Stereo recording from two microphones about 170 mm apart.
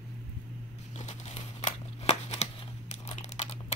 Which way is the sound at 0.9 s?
45° left (ahead or behind).